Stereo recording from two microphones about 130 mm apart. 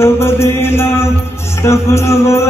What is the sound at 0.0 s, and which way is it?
Mantra, 20° left (ahead or behind).